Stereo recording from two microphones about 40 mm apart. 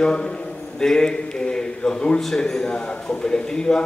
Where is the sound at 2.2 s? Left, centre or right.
Centre.